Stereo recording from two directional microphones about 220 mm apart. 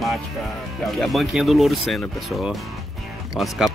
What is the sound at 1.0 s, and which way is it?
Speech, centre (ahead or behind).